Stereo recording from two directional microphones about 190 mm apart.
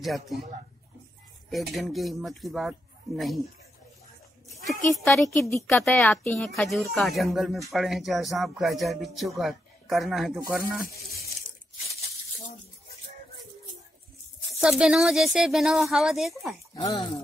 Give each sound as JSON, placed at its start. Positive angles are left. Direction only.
{"t": 0.0, "sound": "speech", "side_deg": 0}
{"t": 1.5, "sound": "speech", "side_deg": 0}
{"t": 5.0, "sound": "speech", "side_deg": 0}
{"t": 14.6, "sound": "speech", "side_deg": -5}
{"t": 16.7, "sound": "speech", "side_deg": 20}